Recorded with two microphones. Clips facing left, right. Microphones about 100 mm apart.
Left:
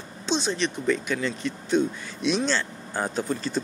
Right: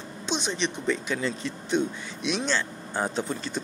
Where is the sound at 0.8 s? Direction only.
25° right (ahead or behind).